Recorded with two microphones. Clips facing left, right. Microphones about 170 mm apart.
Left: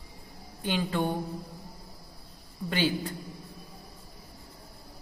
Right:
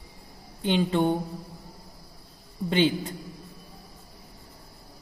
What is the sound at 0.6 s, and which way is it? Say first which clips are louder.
Speech: right 5 dB; 25° right (ahead or behind).